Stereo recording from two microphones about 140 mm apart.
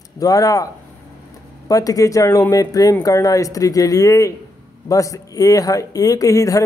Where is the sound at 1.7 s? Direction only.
25° left (ahead or behind).